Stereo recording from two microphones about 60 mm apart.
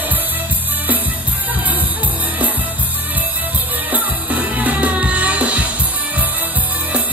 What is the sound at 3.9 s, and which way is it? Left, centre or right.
Music, right.